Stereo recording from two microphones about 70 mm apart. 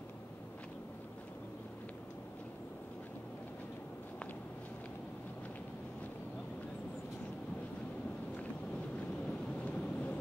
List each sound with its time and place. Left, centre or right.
9.7 s vehicle: centre